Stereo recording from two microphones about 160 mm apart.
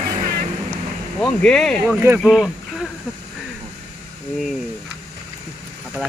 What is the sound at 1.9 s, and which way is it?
Speech, 15° right (ahead or behind).